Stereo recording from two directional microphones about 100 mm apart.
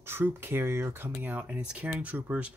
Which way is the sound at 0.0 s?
25° right (ahead or behind).